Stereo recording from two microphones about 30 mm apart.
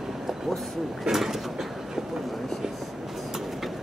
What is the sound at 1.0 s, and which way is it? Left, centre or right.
Speech, centre.